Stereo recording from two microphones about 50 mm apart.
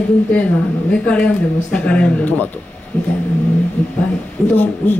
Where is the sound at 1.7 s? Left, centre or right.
Left.